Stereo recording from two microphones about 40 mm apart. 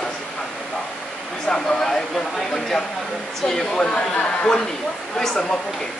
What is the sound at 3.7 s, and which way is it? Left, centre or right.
Speech, left.